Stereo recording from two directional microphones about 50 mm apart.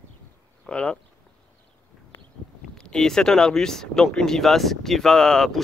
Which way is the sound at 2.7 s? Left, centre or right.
Centre.